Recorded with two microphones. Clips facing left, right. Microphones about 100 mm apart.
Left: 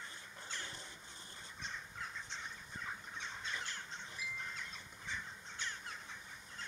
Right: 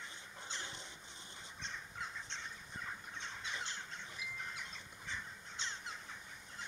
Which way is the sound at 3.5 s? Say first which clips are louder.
Right 2 dB; 20° right (ahead or behind).